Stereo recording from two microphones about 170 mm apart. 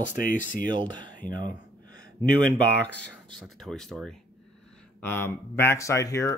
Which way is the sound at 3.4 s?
Centre (ahead or behind).